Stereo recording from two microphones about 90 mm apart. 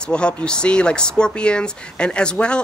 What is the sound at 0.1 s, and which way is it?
Speech, 15° left (ahead or behind).